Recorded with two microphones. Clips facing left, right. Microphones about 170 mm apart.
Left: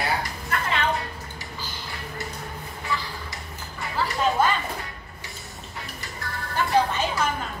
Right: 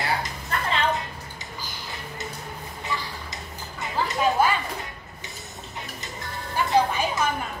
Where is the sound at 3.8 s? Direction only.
20° right (ahead or behind).